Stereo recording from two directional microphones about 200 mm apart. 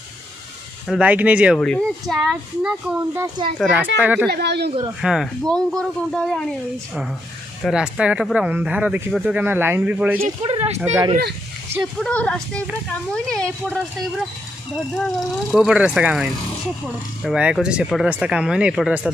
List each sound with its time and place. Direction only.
0.8 s a child's voice: 5° right (ahead or behind)
4.3 s speech: 55° right (ahead or behind)
5.0 s a child's voice: centre (ahead or behind)
10.4 s speech: 30° right (ahead or behind)
10.8 s speech: 10° right (ahead or behind)
12.0 s a child's voice: 5° left (ahead or behind)
15.0 s a child's voice: centre (ahead or behind)